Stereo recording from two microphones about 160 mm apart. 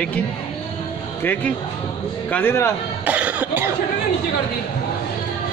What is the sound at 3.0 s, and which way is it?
Cough, 10° right (ahead or behind).